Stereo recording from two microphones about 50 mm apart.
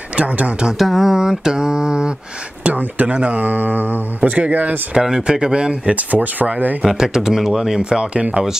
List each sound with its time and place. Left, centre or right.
0.1 s speech: right
0.7 s mantra: centre
2.6 s speech: right
3.2 s mantra: right
4.3 s speech: right
4.9 s mantra: centre
5.9 s mantra: right
6.8 s speech: centre
7.8 s mantra: centre